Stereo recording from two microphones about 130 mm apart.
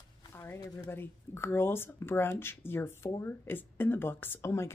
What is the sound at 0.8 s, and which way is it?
Speech, 20° left (ahead or behind).